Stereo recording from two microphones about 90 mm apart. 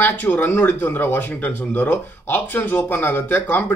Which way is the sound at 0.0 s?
20° left (ahead or behind).